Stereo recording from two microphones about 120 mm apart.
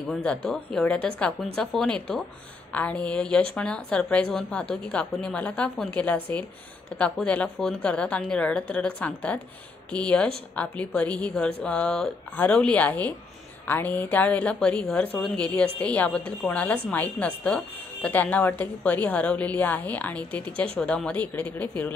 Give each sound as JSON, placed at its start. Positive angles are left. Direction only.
{"t": 0.1, "sound": "speech", "side_deg": 5}